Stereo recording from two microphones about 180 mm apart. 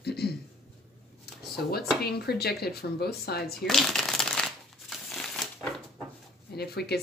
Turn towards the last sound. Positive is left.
turn(degrees=65)  # may be behind; listen again after turning